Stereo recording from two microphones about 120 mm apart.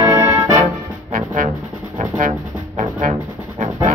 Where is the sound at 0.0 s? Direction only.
25° right (ahead or behind).